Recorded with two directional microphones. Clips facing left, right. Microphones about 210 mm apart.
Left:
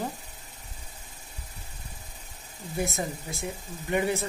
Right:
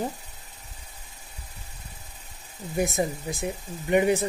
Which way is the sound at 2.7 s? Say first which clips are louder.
Right 5 dB; 15° right (ahead or behind).